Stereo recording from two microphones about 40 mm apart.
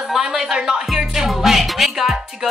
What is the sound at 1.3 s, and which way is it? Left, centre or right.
Music, centre.